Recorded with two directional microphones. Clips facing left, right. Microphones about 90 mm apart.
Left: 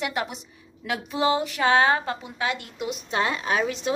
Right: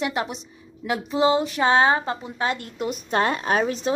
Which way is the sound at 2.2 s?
35° right (ahead or behind).